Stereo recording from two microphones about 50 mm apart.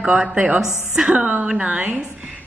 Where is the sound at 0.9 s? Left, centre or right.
Centre.